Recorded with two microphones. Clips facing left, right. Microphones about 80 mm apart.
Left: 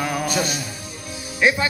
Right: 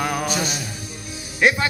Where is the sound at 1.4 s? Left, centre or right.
Right.